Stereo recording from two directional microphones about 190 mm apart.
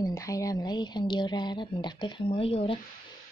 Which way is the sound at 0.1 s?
15° left (ahead or behind).